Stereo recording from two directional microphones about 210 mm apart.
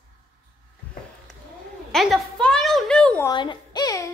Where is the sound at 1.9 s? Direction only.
Centre (ahead or behind).